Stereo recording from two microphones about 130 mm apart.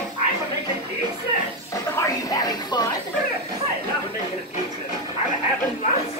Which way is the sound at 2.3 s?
30° left (ahead or behind).